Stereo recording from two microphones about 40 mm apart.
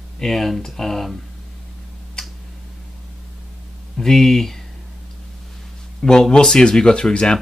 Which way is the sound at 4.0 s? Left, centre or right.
Centre.